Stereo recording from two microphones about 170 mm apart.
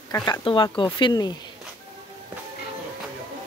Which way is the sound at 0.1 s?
25° left (ahead or behind).